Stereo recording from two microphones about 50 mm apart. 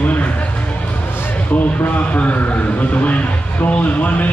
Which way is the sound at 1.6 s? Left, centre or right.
Left.